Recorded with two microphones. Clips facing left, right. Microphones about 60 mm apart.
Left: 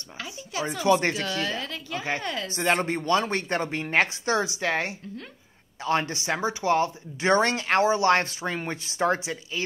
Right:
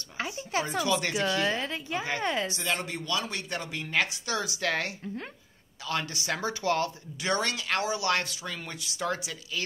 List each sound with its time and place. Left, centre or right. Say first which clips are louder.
0.2 s speech: right 2 dB; right
0.8 s speech: left 7 dB; left
1.1 s a woman's voice: right 2 dB; right
2.5 s speech: left 7 dB; left